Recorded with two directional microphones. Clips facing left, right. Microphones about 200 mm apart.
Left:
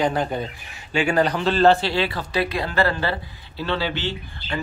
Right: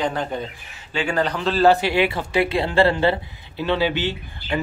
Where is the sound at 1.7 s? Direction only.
10° right (ahead or behind).